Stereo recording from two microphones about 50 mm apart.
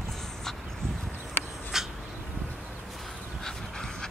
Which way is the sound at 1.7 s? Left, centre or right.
Centre.